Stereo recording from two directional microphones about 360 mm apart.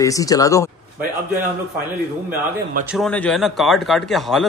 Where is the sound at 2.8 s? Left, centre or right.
Centre.